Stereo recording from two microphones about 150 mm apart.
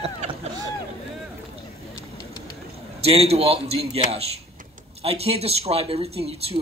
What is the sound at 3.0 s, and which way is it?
Speech, 40° right (ahead or behind).